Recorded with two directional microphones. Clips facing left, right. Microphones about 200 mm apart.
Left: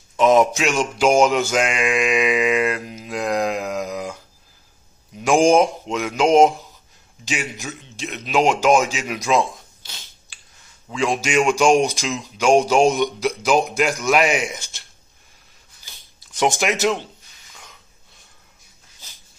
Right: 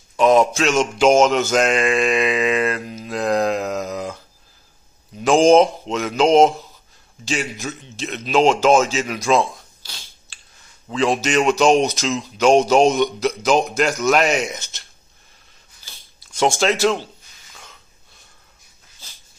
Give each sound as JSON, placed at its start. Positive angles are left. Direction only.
{"t": 0.2, "sound": "a man's voice", "side_deg": 20}
{"t": 5.2, "sound": "speech", "side_deg": 10}
{"t": 15.8, "sound": "a sound", "side_deg": 15}